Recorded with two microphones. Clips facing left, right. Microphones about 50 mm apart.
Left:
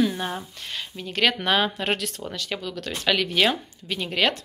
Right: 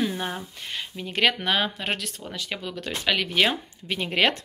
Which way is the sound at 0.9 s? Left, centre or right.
Centre.